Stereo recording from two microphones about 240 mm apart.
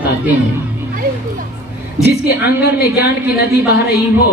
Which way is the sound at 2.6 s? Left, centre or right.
Left.